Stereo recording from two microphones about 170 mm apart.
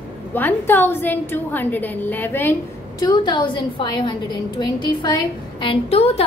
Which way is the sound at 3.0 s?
25° left (ahead or behind).